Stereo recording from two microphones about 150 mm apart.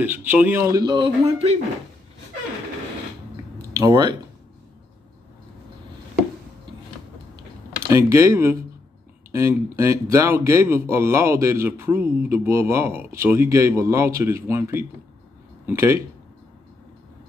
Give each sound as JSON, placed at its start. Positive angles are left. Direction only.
{"t": 0.0, "sound": "speech", "side_deg": -10}
{"t": 0.7, "sound": "speech", "side_deg": -30}
{"t": 3.7, "sound": "speech", "side_deg": -25}
{"t": 7.9, "sound": "speech", "side_deg": -20}